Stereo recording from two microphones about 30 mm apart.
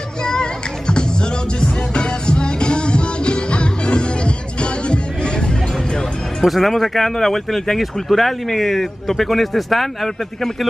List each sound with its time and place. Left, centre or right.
0.3 s music: left
6.4 s speech: centre
6.7 s speech: centre
7.7 s speech: centre